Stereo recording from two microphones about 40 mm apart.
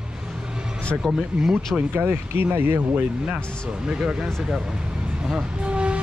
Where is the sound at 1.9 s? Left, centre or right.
Right.